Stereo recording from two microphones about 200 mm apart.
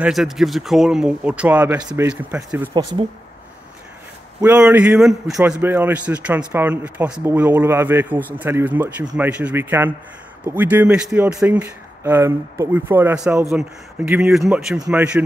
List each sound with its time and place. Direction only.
0.0 s speech: centre (ahead or behind)
4.4 s a man's voice: 5° right (ahead or behind)